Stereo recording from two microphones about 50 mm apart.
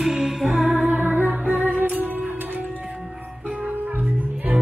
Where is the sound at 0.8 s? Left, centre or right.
Right.